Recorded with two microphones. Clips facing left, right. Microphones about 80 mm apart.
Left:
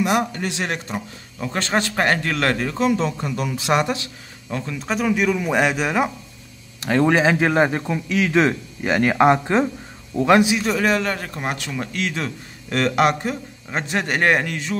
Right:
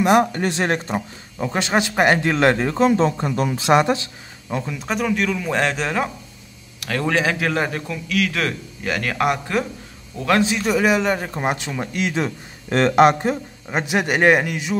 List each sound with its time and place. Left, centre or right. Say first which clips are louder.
0.0 s speech: right 4 dB; right
1.4 s a man's voice: right 2 dB; centre
4.7 s a man's voice: left 2 dB; centre
10.5 s a man's voice: right 1 dB; centre; by 13.4 s right
13.7 s speech: right 3 dB; centre